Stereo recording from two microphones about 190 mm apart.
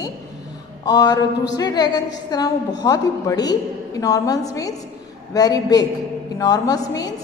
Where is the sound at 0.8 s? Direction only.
20° left (ahead or behind).